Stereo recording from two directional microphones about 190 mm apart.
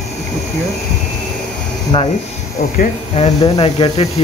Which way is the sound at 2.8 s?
35° left (ahead or behind).